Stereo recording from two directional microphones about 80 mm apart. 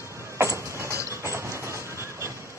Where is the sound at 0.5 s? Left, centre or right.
Right.